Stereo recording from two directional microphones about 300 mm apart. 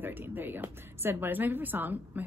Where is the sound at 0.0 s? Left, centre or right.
Centre.